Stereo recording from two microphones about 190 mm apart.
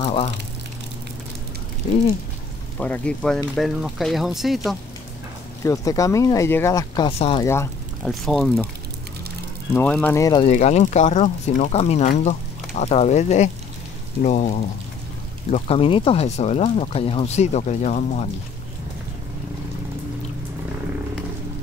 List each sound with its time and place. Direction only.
2.8 s speech: 5° left (ahead or behind)
5.6 s speech: 15° left (ahead or behind)
7.1 s speech: 30° left (ahead or behind)
7.4 s speech: 15° left (ahead or behind)
8.0 s speech: centre (ahead or behind)
9.8 s speech: 5° left (ahead or behind)
10.1 s speech: 15° left (ahead or behind)
10.4 s speech: 35° left (ahead or behind)